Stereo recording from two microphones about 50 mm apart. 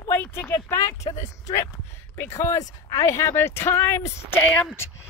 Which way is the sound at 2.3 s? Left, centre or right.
Left.